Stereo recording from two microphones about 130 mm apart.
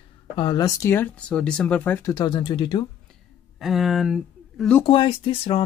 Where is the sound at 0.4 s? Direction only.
35° left (ahead or behind).